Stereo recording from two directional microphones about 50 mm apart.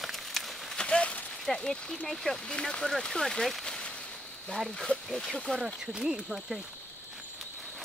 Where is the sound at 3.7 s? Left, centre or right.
Centre.